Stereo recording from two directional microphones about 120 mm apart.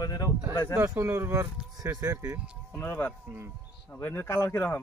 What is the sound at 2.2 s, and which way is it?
Speech, 10° right (ahead or behind).